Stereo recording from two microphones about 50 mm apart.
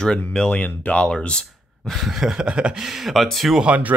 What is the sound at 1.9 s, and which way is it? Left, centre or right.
Speech, centre.